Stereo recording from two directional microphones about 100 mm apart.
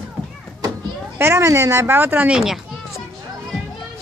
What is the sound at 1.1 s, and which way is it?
Speech, 25° right (ahead or behind).